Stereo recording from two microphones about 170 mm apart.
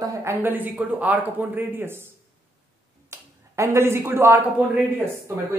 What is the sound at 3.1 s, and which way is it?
Speech, 15° right (ahead or behind).